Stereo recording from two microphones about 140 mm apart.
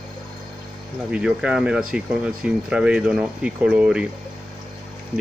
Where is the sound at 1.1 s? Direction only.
5° right (ahead or behind).